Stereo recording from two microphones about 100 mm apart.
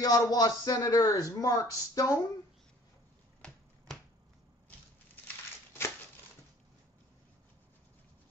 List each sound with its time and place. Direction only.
0.0 s speech: 40° left (ahead or behind)
3.4 s finger snapping: 5° left (ahead or behind)